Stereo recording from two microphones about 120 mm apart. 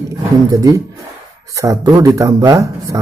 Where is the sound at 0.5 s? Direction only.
30° right (ahead or behind).